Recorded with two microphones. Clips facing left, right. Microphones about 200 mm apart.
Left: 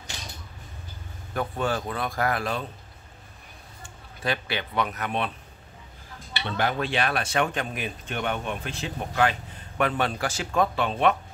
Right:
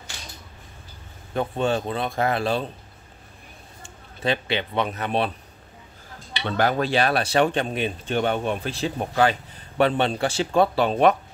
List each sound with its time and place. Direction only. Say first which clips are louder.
1.3 s speech: right 4 dB; 25° right (ahead or behind)
3.8 s a man's voice: right 4 dB; 25° right (ahead or behind)
6.5 s speech: right 5 dB; 40° right (ahead or behind)